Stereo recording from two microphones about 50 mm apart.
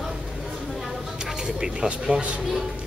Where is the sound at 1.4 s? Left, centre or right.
Centre.